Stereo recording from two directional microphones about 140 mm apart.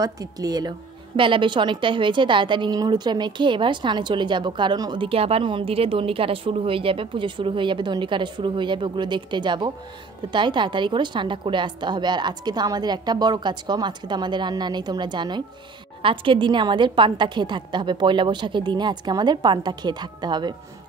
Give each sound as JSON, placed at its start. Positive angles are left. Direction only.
{"t": 0.0, "sound": "a woman's voice", "side_deg": -25}